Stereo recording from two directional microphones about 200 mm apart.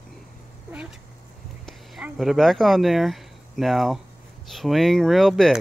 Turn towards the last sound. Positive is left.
turn(degrees=0)  # may be behind; listen again after turning